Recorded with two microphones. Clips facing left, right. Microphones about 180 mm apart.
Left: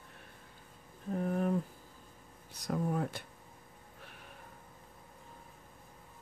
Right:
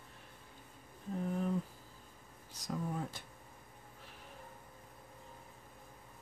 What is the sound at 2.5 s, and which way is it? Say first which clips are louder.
Speech: left 6 dB; 60° left (ahead or behind).